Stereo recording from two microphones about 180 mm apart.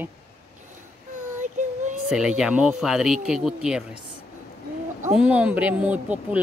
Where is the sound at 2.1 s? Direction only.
5° right (ahead or behind).